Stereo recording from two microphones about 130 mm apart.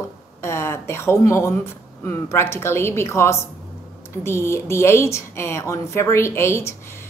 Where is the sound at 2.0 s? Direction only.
20° left (ahead or behind).